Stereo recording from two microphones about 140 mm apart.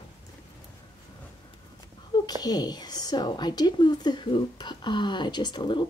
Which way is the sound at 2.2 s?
30° left (ahead or behind).